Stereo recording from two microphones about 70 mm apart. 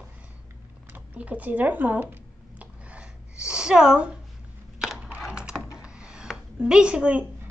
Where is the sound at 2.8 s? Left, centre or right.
Centre.